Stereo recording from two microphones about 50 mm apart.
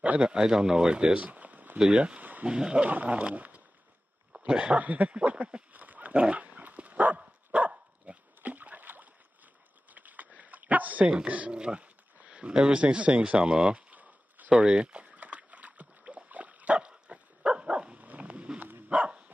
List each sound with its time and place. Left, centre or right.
0.0 s speech: right
1.2 s a sound: right
1.8 s speech: centre
2.1 s a sound: right
2.4 s speech: centre
2.9 s speech: right
5.7 s dog: right
8.4 s a sound: right
9.9 s dog: right
11.1 s speech: right
13.7 s a sound: right
14.5 s rowboat: centre
18.9 s dog: right